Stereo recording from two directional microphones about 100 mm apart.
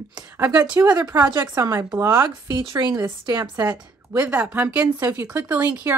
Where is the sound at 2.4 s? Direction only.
45° right (ahead or behind).